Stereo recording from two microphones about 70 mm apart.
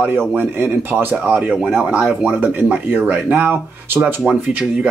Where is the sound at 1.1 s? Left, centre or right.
Centre.